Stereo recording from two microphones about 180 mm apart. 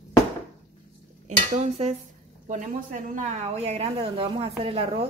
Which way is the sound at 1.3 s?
35° right (ahead or behind).